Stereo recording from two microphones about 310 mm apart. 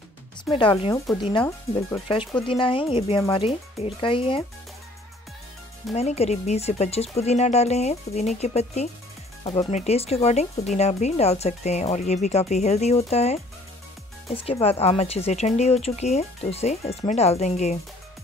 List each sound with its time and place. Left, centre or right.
0.5 s speech: centre
5.9 s speech: centre